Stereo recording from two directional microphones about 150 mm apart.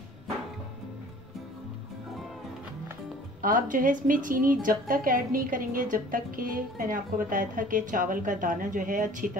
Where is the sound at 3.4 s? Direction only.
65° right (ahead or behind).